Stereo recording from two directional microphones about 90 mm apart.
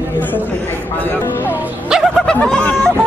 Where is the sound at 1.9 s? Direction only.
Centre (ahead or behind).